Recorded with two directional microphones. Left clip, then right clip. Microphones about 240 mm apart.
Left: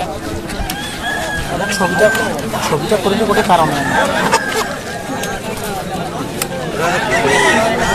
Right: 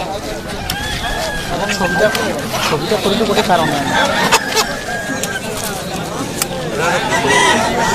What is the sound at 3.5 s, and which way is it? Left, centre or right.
Speech, centre.